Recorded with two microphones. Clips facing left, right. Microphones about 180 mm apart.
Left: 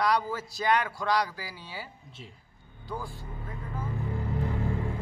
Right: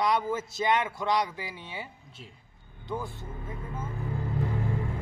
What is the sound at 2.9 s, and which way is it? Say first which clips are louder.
Speech: right 3 dB; 20° right (ahead or behind).